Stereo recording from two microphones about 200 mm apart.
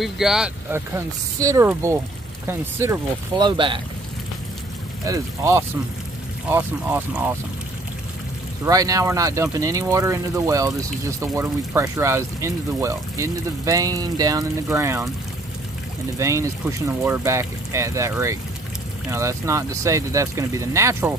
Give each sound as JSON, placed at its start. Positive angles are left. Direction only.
{"t": 0.0, "sound": "speech", "side_deg": 0}
{"t": 5.0, "sound": "speech", "side_deg": -15}
{"t": 8.6, "sound": "speech", "side_deg": -15}
{"t": 16.2, "sound": "speech", "side_deg": -15}